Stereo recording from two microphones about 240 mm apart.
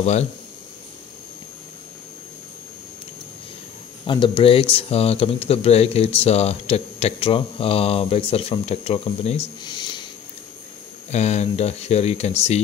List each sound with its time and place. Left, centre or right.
0.0 s speech: left
4.0 s speech: left
11.1 s speech: left